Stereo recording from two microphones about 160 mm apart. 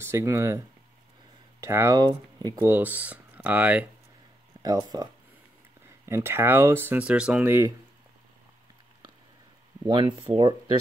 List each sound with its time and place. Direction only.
0.0 s speech: 15° right (ahead or behind)
1.6 s speech: 15° right (ahead or behind)
2.5 s speech: 15° right (ahead or behind)
4.6 s speech: 25° right (ahead or behind)
9.8 s speech: 30° right (ahead or behind)